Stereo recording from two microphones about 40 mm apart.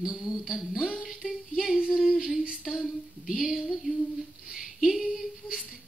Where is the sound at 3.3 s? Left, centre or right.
Centre.